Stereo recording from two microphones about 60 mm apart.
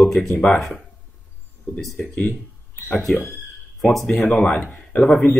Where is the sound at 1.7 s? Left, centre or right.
Left.